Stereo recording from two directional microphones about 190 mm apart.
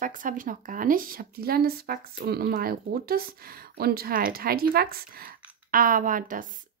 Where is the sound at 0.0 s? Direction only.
45° right (ahead or behind).